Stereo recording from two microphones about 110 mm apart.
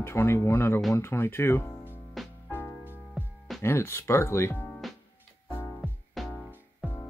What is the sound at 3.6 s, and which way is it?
Speech, 25° left (ahead or behind).